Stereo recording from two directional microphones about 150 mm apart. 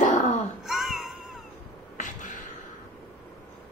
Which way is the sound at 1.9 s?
60° left (ahead or behind).